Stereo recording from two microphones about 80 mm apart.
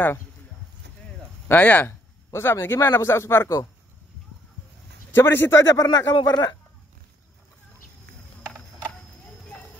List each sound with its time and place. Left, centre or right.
1.5 s speech: centre
1.9 s speech: left
5.1 s a man's voice: left
5.8 s speech: left